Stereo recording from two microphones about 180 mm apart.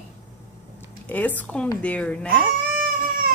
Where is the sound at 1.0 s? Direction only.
10° left (ahead or behind).